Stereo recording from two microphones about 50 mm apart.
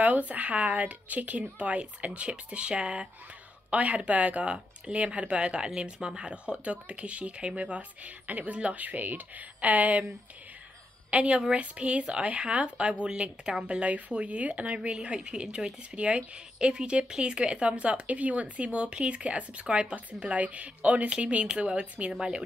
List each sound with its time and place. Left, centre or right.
0.0 s speech: right
11.1 s a woman's voice: right